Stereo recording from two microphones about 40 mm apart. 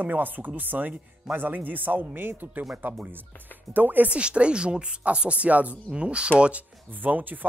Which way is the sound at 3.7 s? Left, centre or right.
Right.